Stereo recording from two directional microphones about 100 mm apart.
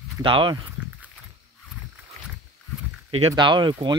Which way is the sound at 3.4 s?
50° right (ahead or behind).